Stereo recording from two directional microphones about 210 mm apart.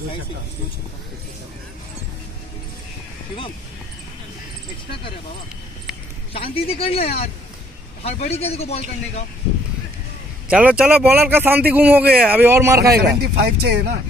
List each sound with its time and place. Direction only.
6.3 s a man's voice: 25° left (ahead or behind)
10.5 s a man's voice: 5° right (ahead or behind)
13.2 s speech: 50° right (ahead or behind)